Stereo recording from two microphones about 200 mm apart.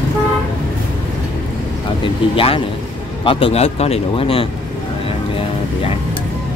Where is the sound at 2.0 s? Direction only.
25° left (ahead or behind).